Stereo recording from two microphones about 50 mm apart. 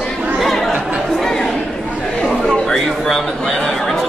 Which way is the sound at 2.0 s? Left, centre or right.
Centre.